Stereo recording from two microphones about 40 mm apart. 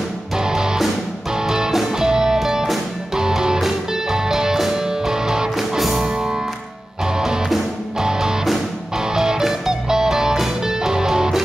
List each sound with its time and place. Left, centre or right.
0.4 s music: centre